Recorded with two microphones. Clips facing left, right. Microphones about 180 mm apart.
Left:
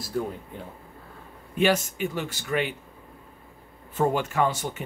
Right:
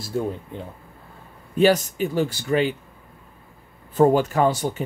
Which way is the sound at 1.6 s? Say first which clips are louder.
Right 5 dB; 35° right (ahead or behind).